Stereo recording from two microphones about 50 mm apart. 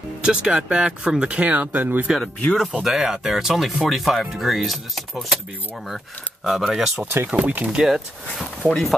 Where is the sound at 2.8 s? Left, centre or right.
Centre.